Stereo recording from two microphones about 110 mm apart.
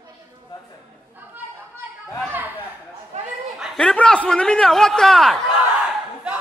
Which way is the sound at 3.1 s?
90° right.